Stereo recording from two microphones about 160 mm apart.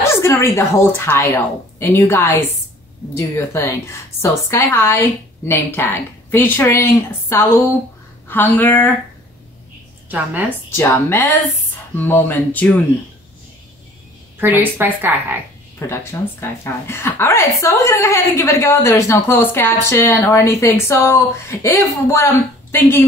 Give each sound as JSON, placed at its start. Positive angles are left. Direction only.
{"t": 0.0, "sound": "a sound", "side_deg": 15}
{"t": 0.6, "sound": "a woman's voice", "side_deg": 15}
{"t": 10.0, "sound": "speech", "side_deg": -10}
{"t": 10.8, "sound": "a woman's voice", "side_deg": 15}
{"t": 14.4, "sound": "a woman's voice", "side_deg": -10}
{"t": 15.9, "sound": "a woman's voice", "side_deg": 15}